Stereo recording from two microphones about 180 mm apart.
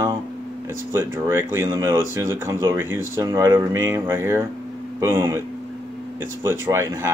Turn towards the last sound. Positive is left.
turn(degrees=-15)  # may be behind; listen again after turning